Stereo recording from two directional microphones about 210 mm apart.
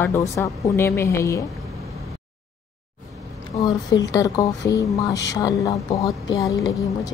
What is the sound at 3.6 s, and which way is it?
Speech, 15° left (ahead or behind).